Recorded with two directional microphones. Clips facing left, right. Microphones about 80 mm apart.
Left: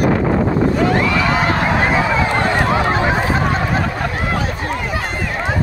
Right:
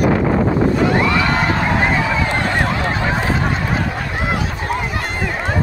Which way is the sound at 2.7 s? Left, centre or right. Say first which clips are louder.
Left 4 dB; left.